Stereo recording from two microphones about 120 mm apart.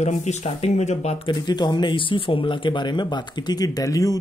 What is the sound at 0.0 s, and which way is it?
Speech, 75° left (ahead or behind).